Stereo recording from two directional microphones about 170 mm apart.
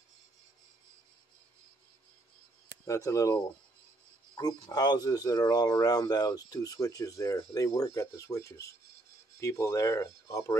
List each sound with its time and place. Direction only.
2.9 s speech: 20° left (ahead or behind)